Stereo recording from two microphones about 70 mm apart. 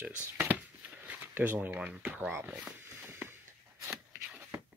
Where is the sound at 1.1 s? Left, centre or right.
Right.